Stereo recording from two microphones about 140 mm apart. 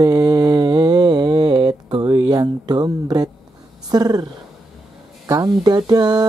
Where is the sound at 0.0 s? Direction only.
25° right (ahead or behind).